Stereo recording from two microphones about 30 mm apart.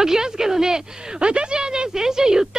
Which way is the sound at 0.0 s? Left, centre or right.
Centre.